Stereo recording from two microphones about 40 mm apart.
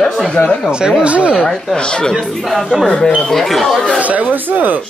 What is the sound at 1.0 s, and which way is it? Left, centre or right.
Speech, right.